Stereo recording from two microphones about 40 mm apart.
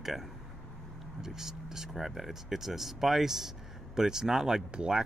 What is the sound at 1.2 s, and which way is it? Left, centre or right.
Speech, centre.